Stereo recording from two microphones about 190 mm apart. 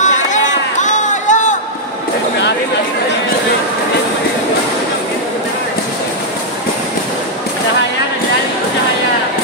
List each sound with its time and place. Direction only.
0.0 s run: 40° left (ahead or behind)